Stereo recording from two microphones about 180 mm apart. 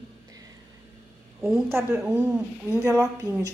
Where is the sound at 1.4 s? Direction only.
15° right (ahead or behind).